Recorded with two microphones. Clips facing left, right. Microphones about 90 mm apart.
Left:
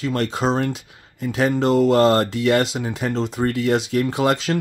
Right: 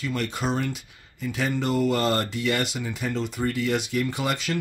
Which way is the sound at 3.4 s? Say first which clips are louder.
Left 5 dB; 90° left.